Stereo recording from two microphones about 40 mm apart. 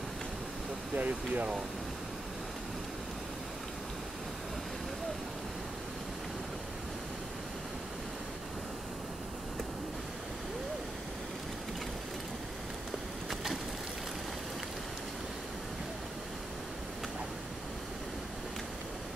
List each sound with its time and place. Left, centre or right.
0.9 s speech: right
13.3 s vehicle: centre